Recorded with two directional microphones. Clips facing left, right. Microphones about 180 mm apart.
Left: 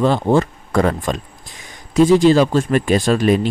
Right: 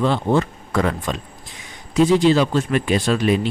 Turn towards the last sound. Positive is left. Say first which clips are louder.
# left 3 dB
turn(degrees=45)  # may be behind; listen again after turning